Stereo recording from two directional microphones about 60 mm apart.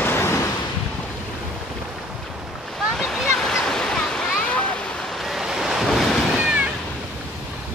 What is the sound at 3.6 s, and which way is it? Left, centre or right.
Waves, centre.